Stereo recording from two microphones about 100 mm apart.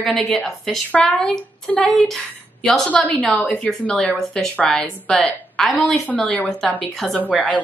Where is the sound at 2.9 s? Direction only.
15° left (ahead or behind).